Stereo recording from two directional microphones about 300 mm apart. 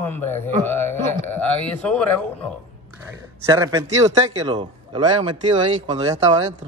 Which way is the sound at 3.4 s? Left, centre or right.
Centre.